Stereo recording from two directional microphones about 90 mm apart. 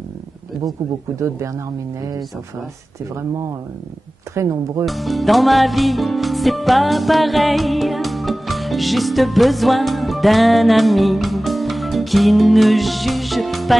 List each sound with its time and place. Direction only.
4.4 s speech: 35° right (ahead or behind)
4.8 s music: centre (ahead or behind)